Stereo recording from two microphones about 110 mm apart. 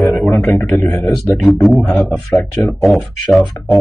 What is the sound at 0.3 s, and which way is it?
Speech, 20° left (ahead or behind).